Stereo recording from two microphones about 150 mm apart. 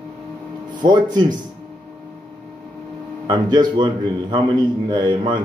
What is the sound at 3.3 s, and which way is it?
A man's voice, 30° right (ahead or behind).